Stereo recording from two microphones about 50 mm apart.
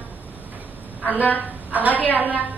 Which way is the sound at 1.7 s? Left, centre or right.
Right.